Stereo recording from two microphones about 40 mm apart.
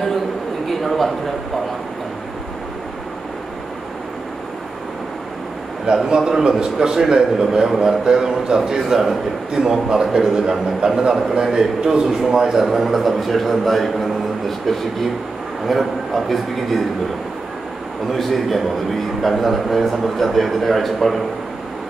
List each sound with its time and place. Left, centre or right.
0.7 s a sound: centre
6.0 s a man's voice: centre
15.6 s a man's voice: centre
18.1 s a man's voice: centre